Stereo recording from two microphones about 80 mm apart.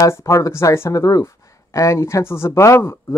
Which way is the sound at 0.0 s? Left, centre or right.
Left.